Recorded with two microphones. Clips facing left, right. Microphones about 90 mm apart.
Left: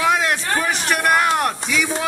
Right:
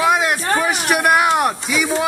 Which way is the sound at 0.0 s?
10° right (ahead or behind).